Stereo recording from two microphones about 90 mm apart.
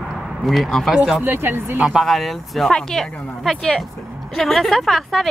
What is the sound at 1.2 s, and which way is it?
Speech, 25° right (ahead or behind).